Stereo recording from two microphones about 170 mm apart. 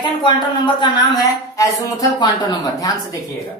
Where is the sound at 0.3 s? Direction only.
30° left (ahead or behind).